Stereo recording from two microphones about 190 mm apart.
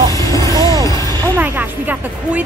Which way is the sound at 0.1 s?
15° left (ahead or behind).